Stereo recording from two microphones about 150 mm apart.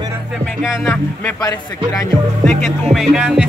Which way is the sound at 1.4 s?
25° left (ahead or behind).